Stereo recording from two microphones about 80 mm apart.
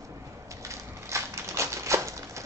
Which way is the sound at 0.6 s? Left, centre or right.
Right.